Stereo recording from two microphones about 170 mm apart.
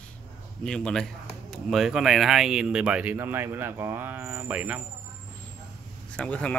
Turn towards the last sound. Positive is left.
turn(degrees=10)  # may be behind; listen again after turning